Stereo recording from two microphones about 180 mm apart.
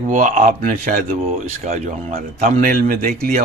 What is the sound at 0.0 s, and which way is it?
Speech, 40° right (ahead or behind).